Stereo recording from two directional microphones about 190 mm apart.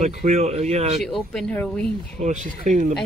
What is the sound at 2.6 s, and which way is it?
Speech, 40° right (ahead or behind).